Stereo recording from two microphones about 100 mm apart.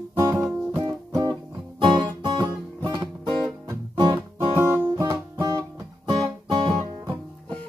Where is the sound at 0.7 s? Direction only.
35° right (ahead or behind).